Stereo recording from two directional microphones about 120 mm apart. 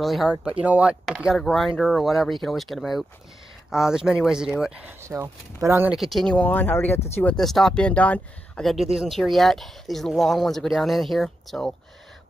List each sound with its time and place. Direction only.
0.0 s speech: centre (ahead or behind)
5.0 s speech: 25° right (ahead or behind)
5.9 s speech: centre (ahead or behind); by 7.0 s 15° left (ahead or behind)
7.3 s speech: 5° left (ahead or behind)
8.9 s speech: centre (ahead or behind)